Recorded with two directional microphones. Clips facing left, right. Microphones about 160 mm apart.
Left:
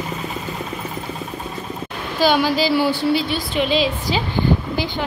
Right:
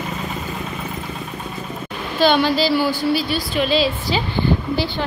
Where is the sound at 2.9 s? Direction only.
20° left (ahead or behind).